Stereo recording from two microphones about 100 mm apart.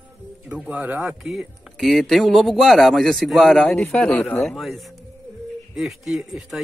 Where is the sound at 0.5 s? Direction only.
15° right (ahead or behind).